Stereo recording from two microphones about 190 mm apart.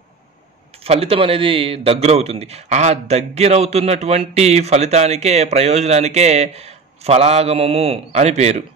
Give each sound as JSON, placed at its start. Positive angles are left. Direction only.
{"t": 0.8, "sound": "a man's voice", "side_deg": -30}